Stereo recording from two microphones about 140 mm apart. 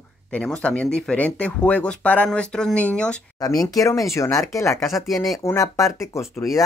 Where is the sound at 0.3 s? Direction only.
5° left (ahead or behind).